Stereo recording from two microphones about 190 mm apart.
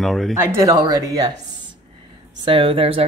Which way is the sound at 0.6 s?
20° right (ahead or behind).